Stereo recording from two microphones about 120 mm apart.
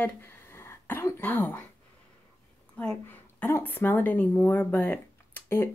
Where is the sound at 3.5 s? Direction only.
20° left (ahead or behind).